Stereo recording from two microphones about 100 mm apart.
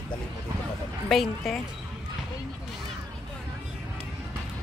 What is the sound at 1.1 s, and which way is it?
Speech, 5° left (ahead or behind).